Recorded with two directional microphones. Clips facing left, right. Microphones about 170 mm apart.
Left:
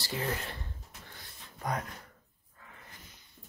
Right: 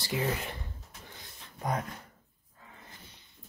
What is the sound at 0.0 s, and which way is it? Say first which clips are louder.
Speech: right 3 dB; 15° right (ahead or behind).